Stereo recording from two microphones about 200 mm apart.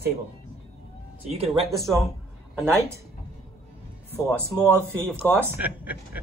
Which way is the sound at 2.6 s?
10° right (ahead or behind).